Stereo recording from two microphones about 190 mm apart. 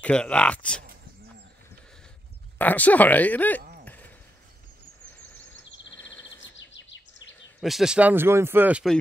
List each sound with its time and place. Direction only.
0.0 s speech: 5° left (ahead or behind)
2.6 s speech: 10° left (ahead or behind)
3.8 s a sound: 10° left (ahead or behind)
6.6 s bird: 75° left (ahead or behind)
7.6 s speech: centre (ahead or behind)